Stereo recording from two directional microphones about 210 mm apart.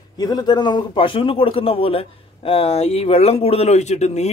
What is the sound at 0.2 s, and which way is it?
A man's voice, 20° left (ahead or behind).